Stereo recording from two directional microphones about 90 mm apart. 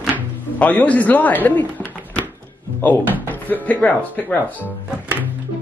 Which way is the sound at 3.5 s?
15° left (ahead or behind).